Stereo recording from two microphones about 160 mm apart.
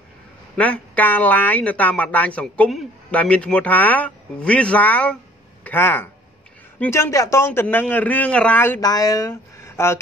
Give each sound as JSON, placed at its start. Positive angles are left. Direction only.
{"t": 0.6, "sound": "speech", "side_deg": 10}
{"t": 8.8, "sound": "speech", "side_deg": 25}